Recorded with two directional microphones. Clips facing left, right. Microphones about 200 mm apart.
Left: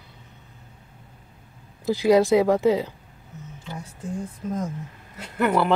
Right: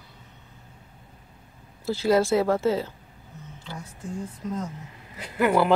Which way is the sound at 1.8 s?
15° left (ahead or behind).